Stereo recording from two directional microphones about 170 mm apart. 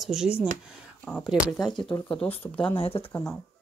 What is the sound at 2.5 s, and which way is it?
Speech, 30° left (ahead or behind).